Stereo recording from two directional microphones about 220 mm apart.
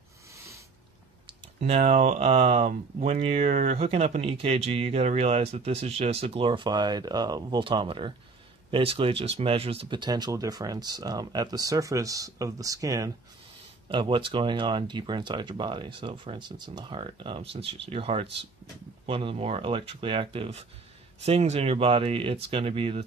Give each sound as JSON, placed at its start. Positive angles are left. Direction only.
{"t": 1.6, "sound": "speech", "side_deg": -30}